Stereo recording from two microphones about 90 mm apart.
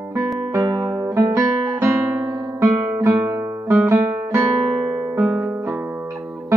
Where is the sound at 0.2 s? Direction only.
30° right (ahead or behind).